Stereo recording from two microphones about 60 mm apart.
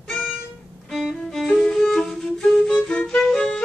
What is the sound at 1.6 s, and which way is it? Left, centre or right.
Music, centre.